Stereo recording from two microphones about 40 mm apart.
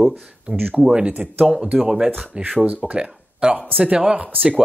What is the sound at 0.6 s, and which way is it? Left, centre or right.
Speech, right.